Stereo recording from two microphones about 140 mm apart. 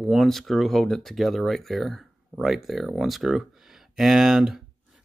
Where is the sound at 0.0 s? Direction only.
Centre (ahead or behind).